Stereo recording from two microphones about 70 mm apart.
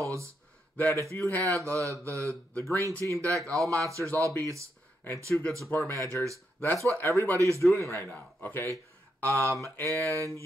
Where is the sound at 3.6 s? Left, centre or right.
Right.